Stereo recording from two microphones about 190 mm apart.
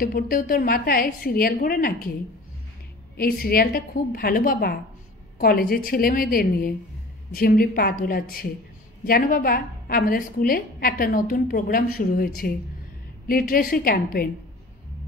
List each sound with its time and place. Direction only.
0.0 s a woman's voice: 45° left (ahead or behind)
3.2 s a woman's voice: 50° left (ahead or behind)